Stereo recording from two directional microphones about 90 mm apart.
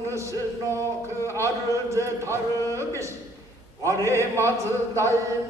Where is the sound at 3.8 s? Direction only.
35° right (ahead or behind).